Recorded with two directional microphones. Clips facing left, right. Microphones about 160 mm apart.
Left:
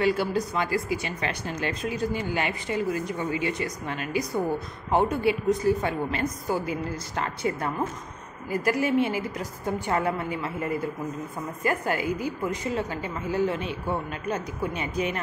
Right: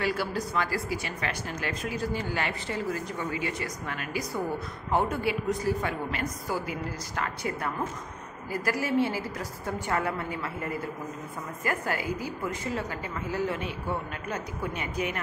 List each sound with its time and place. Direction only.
0.0 s a woman's voice: 20° left (ahead or behind)